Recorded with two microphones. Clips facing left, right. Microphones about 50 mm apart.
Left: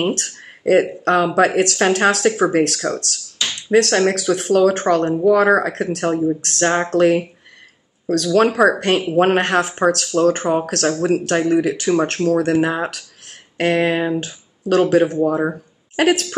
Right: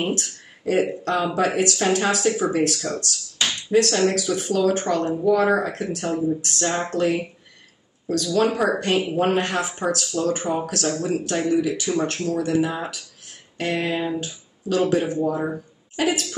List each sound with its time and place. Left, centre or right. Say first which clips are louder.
0.0 s speech: left 4 dB; left